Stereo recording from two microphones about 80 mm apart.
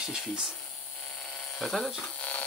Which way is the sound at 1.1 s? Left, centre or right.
Centre.